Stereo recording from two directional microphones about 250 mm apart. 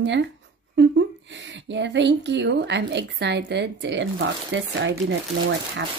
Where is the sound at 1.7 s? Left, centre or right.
Right.